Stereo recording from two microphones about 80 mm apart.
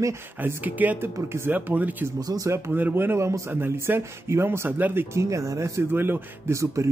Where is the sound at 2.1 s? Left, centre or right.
Right.